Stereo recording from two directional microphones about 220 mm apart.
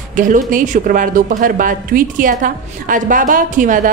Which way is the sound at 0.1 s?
35° right (ahead or behind).